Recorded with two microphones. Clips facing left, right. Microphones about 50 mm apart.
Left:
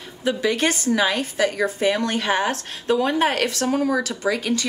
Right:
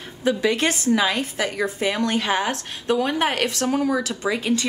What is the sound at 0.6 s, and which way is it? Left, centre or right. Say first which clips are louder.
Speech: even; right.